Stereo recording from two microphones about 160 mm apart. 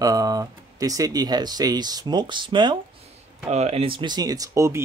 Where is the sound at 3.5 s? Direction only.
40° right (ahead or behind); by 4.8 s 20° right (ahead or behind).